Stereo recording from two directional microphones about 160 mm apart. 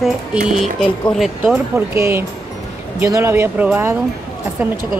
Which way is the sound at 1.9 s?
15° right (ahead or behind).